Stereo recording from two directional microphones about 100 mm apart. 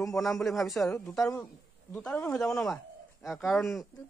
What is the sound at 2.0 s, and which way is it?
Speech, 15° left (ahead or behind).